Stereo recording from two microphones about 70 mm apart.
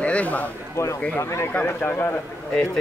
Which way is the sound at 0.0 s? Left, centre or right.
Centre.